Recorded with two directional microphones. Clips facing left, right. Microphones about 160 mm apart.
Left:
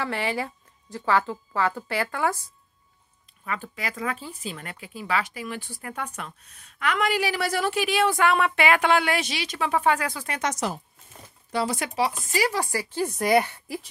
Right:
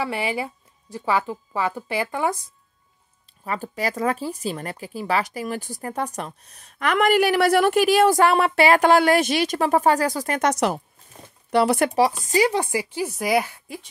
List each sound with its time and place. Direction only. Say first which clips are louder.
0.0 s speech: right 2 dB; 15° right (ahead or behind)
3.4 s speech: right 6 dB; 40° right (ahead or behind); by 7.8 s 60° right (ahead or behind)
7.8 s speech: right 6 dB; 45° right (ahead or behind)
10.4 s speech: right 6 dB; 65° right (ahead or behind)
11.9 s speech: right 6 dB; 30° right (ahead or behind)
12.9 s a woman's voice: left 2 dB; 5° right (ahead or behind)